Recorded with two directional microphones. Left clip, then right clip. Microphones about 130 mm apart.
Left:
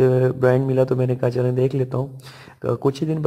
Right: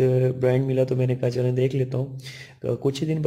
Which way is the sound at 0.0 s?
5° left (ahead or behind).